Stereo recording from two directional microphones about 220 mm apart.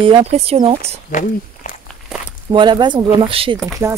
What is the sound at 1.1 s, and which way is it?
Speech, 35° left (ahead or behind).